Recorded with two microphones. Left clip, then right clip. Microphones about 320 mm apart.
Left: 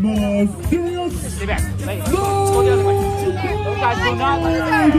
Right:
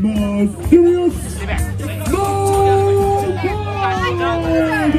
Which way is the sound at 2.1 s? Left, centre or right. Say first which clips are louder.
Right 1 dB; centre.